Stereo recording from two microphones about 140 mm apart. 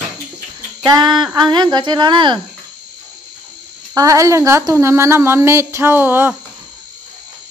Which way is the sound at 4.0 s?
25° right (ahead or behind).